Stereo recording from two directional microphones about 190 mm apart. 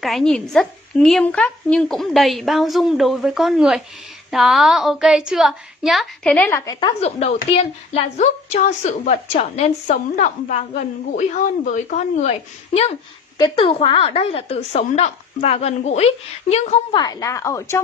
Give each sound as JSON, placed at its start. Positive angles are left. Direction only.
{"t": 0.0, "sound": "speech", "side_deg": 0}
{"t": 7.0, "sound": "a woman's voice", "side_deg": 35}
{"t": 16.9, "sound": "a woman's voice", "side_deg": 20}